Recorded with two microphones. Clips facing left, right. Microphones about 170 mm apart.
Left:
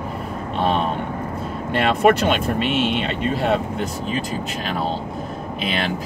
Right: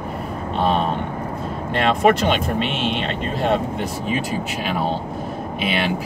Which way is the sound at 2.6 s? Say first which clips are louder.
Left 2 dB; 50° left (ahead or behind).